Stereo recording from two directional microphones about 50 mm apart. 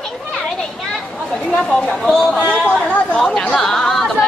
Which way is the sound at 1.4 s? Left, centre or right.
Centre.